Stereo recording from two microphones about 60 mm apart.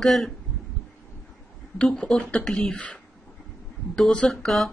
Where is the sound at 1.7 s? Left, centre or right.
Centre.